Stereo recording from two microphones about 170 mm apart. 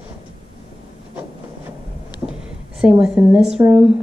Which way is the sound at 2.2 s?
5° right (ahead or behind).